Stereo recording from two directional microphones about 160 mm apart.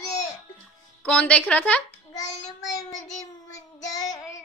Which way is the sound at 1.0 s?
10° left (ahead or behind).